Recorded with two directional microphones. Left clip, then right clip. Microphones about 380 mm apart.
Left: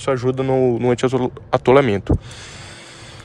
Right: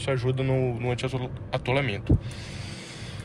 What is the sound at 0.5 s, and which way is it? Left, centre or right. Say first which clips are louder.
Speech: left 12 dB; left.